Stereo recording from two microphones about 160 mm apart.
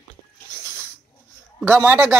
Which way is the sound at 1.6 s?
15° right (ahead or behind).